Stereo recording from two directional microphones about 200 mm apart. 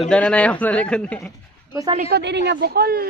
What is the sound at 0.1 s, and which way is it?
Speech, 5° left (ahead or behind).